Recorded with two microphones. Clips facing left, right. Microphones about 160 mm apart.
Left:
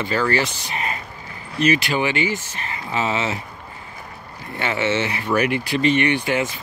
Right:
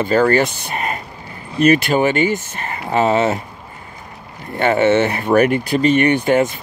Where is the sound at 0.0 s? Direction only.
50° right (ahead or behind).